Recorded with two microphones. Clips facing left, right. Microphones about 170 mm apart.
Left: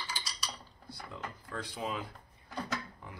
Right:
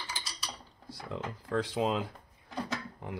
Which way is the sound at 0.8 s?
85° right.